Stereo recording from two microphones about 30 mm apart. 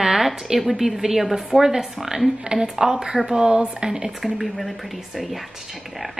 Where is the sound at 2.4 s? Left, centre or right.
Right.